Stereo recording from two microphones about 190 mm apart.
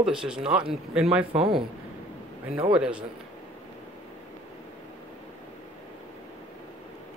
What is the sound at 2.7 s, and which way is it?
Speech, 5° right (ahead or behind).